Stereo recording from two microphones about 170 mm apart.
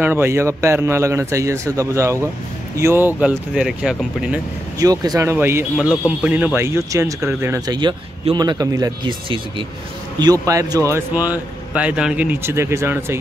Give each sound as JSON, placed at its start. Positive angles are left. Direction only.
{"t": 0.0, "sound": "speech", "side_deg": -15}
{"t": 4.7, "sound": "speech", "side_deg": -20}